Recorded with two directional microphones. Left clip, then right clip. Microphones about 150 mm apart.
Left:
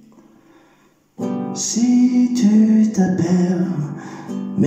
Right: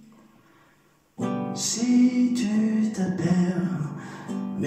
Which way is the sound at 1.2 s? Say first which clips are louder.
Left 5 dB; 40° left (ahead or behind).